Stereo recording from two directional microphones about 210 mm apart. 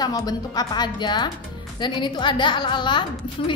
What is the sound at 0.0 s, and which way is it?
A woman's voice, 20° left (ahead or behind).